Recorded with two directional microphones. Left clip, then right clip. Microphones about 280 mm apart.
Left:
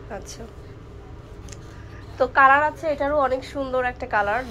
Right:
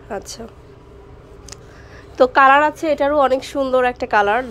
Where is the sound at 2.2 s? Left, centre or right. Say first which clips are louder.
Right 5 dB; right.